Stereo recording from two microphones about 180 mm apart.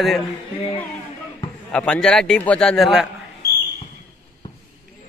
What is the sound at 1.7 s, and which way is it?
A man's voice, 5° left (ahead or behind).